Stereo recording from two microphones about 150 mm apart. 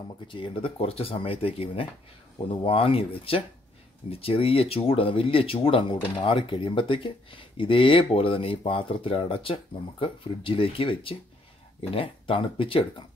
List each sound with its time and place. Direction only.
0.3 s speech: 35° left (ahead or behind)